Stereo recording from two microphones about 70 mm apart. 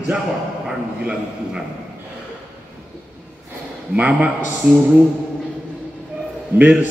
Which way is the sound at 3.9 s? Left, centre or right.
Centre.